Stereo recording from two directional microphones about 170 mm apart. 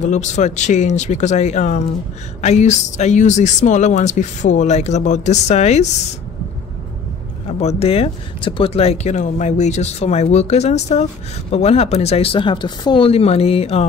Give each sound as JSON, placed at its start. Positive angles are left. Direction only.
{"t": 0.0, "sound": "speech", "side_deg": 45}
{"t": 7.6, "sound": "speech", "side_deg": 35}